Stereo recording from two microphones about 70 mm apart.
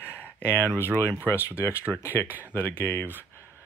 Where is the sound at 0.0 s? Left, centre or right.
Left.